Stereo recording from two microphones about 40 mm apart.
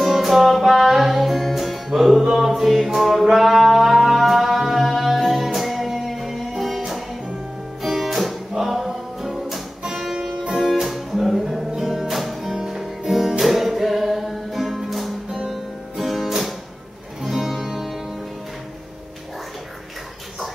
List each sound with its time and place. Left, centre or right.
0.0 s music: centre
15.2 s music: centre
15.5 s music: centre